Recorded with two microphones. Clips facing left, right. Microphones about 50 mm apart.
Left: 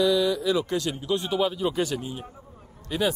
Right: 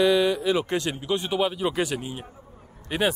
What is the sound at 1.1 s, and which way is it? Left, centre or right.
A man's voice, centre.